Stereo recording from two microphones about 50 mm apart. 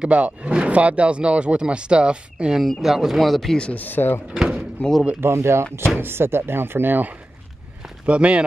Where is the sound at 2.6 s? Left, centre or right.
Centre.